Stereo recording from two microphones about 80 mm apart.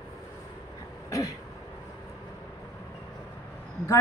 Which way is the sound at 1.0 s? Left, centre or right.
Left.